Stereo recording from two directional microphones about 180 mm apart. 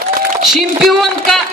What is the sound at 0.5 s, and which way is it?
Speech, centre (ahead or behind).